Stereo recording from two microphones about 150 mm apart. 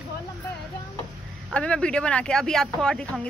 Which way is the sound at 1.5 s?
5° left (ahead or behind).